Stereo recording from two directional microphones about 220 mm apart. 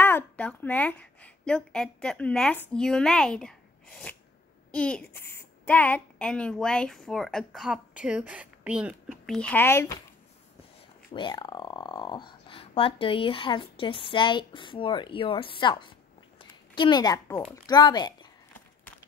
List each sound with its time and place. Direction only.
0.0 s a woman's voice: 10° left (ahead or behind)
11.1 s speech: 20° left (ahead or behind)
16.3 s a sound: 20° left (ahead or behind)
17.6 s speech: 20° left (ahead or behind)